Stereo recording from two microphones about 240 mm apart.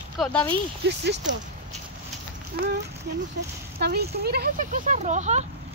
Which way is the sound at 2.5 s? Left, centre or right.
Right.